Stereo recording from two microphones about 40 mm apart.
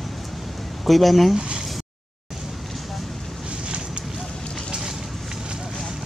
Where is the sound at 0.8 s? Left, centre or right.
Centre.